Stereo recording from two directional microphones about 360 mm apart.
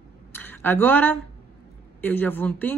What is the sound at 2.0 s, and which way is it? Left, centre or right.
Speech, centre.